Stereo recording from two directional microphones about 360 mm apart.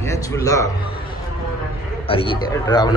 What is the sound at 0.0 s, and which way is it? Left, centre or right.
Speech, centre.